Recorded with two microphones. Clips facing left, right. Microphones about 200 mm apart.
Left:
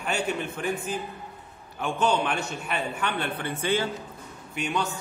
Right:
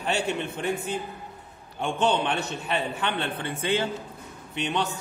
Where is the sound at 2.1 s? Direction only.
20° right (ahead or behind).